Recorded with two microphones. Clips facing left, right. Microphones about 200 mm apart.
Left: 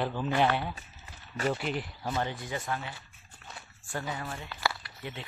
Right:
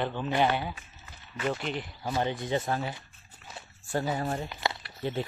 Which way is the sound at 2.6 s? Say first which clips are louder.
Right 4 dB; 40° right (ahead or behind).